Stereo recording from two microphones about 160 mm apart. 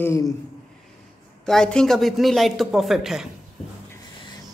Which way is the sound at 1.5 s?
5° left (ahead or behind).